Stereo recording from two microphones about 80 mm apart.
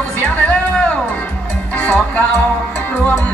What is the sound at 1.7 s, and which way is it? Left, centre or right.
Music, centre.